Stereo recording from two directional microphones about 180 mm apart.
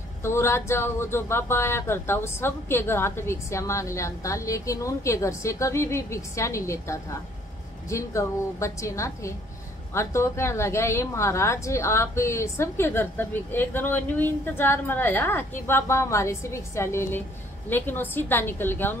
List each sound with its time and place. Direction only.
0.2 s a woman's voice: 15° left (ahead or behind)